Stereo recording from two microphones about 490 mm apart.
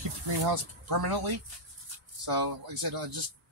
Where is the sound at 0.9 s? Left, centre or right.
Right.